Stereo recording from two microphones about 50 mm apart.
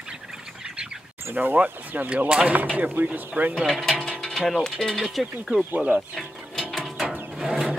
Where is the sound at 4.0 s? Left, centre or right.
Centre.